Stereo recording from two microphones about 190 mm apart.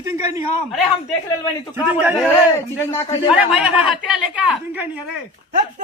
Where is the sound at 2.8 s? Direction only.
15° left (ahead or behind).